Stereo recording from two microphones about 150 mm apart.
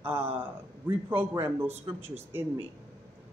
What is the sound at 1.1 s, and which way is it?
A man's voice, 15° right (ahead or behind).